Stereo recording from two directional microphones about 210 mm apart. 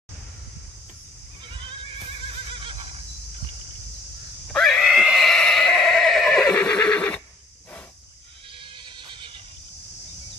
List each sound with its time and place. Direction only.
1.5 s neigh: 25° right (ahead or behind)
4.5 s neigh: 5° left (ahead or behind)
8.8 s neigh: 25° right (ahead or behind)